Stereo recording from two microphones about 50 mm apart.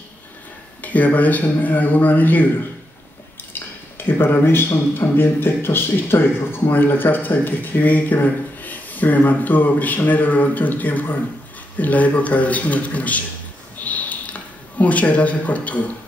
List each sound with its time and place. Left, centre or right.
0.8 s a man's voice: left
3.5 s dishes: left
4.9 s a man's voice: left
13.7 s a sound: left